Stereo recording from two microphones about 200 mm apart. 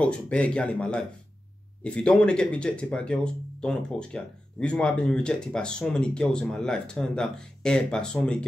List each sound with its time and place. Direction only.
0.0 s speech: 5° left (ahead or behind)